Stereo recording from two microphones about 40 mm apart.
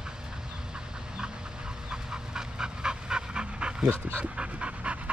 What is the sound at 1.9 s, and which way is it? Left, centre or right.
Pant, centre.